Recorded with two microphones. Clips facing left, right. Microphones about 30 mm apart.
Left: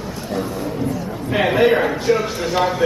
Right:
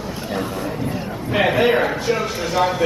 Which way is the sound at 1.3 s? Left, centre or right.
Centre.